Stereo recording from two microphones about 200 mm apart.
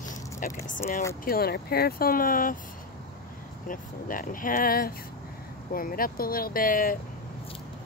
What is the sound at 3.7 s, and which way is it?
Speech, 45° left (ahead or behind).